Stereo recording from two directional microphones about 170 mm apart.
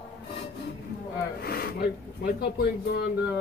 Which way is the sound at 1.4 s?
65° left (ahead or behind).